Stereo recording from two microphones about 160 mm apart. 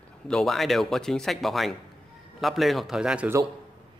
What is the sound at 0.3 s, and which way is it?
Speech, centre (ahead or behind).